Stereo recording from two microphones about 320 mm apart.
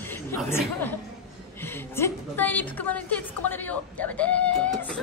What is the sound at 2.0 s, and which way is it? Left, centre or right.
Speech, centre.